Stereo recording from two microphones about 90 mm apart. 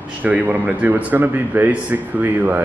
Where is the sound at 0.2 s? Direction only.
20° right (ahead or behind).